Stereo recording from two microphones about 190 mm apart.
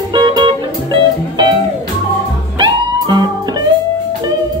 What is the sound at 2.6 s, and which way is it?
Music, 20° right (ahead or behind).